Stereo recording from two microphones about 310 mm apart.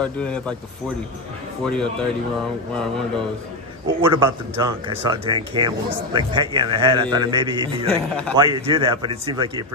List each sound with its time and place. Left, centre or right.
0.0 s speech: centre
1.6 s speech: centre
3.8 s speech: centre